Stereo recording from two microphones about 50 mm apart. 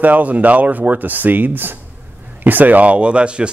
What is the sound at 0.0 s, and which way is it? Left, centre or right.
Speech, right.